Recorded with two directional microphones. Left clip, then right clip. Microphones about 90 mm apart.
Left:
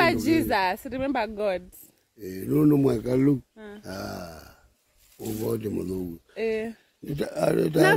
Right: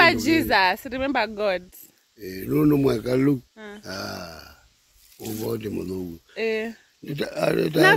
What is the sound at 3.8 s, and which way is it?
Speech, 60° left (ahead or behind).